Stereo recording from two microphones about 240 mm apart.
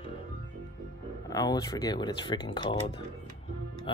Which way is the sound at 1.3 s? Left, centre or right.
Centre.